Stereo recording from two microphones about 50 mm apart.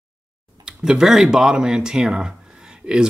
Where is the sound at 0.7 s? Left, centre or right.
Centre.